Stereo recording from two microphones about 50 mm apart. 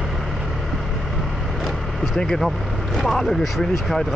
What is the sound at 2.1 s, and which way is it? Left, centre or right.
Speech, centre.